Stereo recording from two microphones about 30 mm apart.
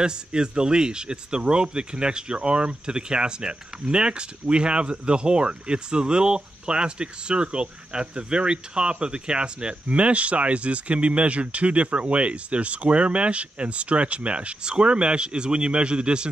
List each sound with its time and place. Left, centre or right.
0.0 s speech: right
9.8 s speech: right